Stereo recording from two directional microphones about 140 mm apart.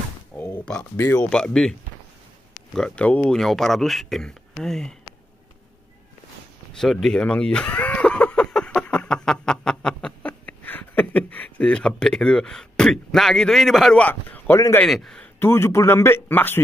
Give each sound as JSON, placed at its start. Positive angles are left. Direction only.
{"t": 0.9, "sound": "a man's voice", "side_deg": 15}
{"t": 1.3, "sound": "speech", "side_deg": 5}
{"t": 6.8, "sound": "a sound", "side_deg": 5}
{"t": 14.9, "sound": "a man's voice", "side_deg": 5}